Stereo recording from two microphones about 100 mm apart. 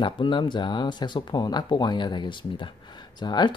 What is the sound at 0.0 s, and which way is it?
Speech, 50° left (ahead or behind).